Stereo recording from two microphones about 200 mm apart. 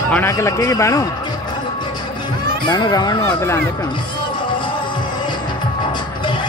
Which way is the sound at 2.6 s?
20° left (ahead or behind).